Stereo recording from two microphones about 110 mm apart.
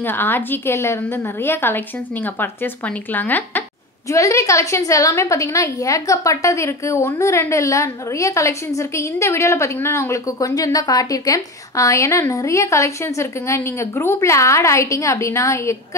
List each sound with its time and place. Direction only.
0.0 s a woman's voice: 20° left (ahead or behind)
4.1 s a woman's voice: 30° left (ahead or behind)